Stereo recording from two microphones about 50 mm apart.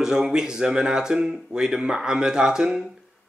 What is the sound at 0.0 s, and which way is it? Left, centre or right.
A man's voice, centre.